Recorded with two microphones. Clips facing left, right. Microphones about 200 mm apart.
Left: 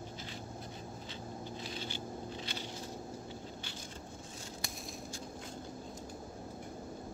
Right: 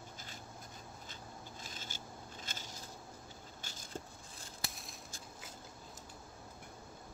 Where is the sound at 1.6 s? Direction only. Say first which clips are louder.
Left 8 dB; 45° right (ahead or behind).